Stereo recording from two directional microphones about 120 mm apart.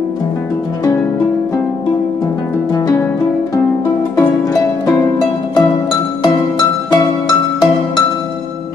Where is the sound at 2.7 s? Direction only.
30° left (ahead or behind).